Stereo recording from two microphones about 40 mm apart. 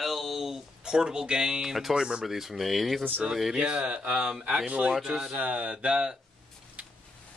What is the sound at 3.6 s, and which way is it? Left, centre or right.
Speech, right.